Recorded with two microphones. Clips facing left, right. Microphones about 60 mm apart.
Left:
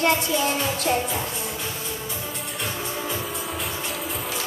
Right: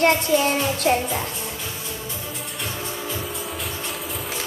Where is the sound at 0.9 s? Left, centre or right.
Right.